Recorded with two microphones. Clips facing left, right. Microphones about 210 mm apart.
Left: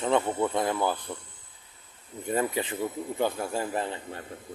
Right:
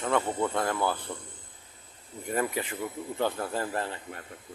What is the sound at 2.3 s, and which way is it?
Speech, 25° left (ahead or behind).